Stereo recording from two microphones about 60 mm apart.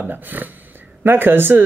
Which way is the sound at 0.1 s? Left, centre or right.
Right.